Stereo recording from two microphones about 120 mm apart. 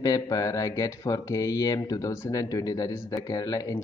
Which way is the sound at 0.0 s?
30° left (ahead or behind).